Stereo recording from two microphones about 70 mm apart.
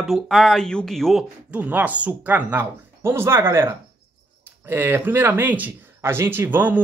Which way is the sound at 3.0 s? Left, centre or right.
Right.